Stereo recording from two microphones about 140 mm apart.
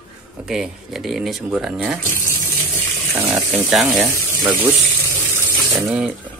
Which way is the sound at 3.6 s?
Centre (ahead or behind).